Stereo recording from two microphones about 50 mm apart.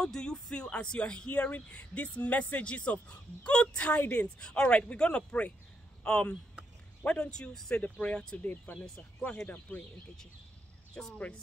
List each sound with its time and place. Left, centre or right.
0.0 s speech: centre; by 4.3 s left
4.4 s speech: centre
7.7 s speech: left
8.4 s speech: left
11.0 s speech: left